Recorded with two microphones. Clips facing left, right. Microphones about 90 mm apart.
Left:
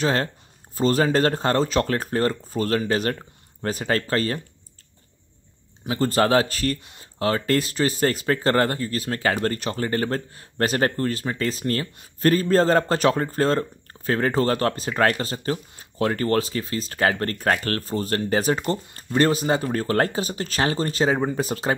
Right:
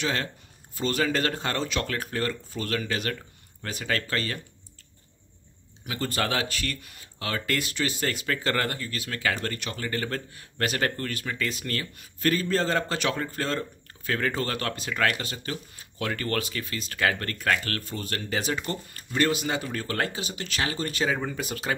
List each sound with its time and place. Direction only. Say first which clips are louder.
0.0 s speech: left 6 dB; 40° left (ahead or behind)
5.9 s speech: left 9 dB; 35° left (ahead or behind)